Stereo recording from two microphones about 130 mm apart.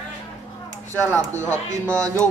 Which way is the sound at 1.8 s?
20° right (ahead or behind).